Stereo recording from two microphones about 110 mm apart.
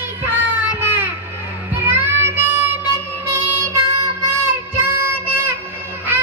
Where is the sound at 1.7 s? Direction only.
20° right (ahead or behind).